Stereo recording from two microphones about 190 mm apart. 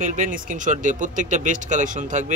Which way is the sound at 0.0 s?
40° right (ahead or behind).